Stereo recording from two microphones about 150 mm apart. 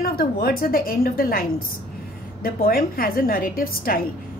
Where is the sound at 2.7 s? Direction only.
80° left.